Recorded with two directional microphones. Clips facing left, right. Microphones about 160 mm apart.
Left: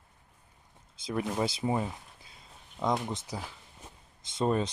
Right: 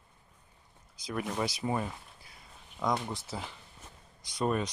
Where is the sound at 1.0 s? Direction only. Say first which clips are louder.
Left 3 dB; 25° left (ahead or behind).